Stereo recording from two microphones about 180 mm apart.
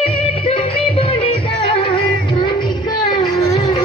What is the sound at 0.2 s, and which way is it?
Music, 30° left (ahead or behind).